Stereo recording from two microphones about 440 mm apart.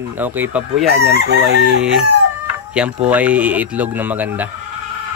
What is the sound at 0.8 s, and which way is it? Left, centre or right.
Chicken, right.